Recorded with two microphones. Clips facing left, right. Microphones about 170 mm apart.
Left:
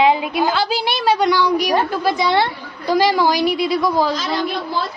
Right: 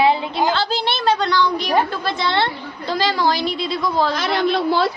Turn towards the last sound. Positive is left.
turn(degrees=-70)  # may be behind; listen again after turning